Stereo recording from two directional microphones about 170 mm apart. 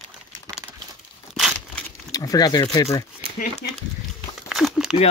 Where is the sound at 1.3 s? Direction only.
Centre (ahead or behind).